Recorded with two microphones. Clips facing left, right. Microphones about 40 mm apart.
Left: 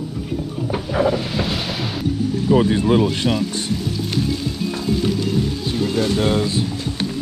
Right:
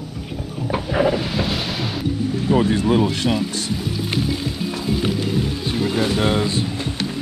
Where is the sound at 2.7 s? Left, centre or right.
Left.